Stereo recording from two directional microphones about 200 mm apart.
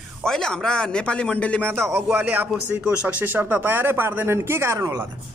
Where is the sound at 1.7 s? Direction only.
10° right (ahead or behind).